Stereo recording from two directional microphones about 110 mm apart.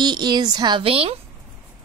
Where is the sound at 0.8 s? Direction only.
60° right (ahead or behind).